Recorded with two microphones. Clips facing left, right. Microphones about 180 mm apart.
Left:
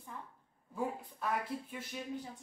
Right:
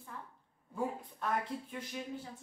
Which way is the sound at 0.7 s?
5° left (ahead or behind).